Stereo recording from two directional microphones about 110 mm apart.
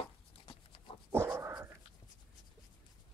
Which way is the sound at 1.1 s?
25° right (ahead or behind).